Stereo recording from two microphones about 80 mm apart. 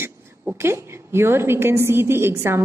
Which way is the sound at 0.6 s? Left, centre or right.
Right.